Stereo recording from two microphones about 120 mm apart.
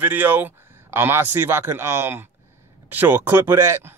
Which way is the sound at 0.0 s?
15° right (ahead or behind).